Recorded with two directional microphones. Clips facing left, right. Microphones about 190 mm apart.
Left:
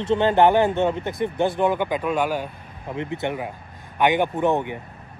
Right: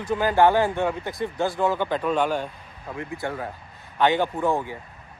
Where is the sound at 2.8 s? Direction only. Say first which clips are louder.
Left 4 dB; 25° left (ahead or behind).